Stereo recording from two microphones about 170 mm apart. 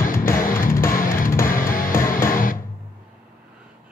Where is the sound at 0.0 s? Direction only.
55° left (ahead or behind).